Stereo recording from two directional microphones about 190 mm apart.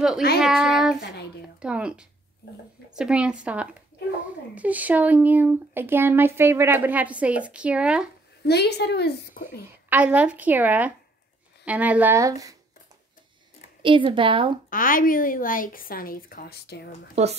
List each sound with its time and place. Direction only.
0.4 s speech: centre (ahead or behind)
8.5 s a woman's voice: 60° left (ahead or behind)
9.8 s speech: 5° right (ahead or behind)
13.8 s a woman's voice: 25° right (ahead or behind)
14.7 s a woman's voice: 45° left (ahead or behind)
17.1 s a woman's voice: 35° right (ahead or behind)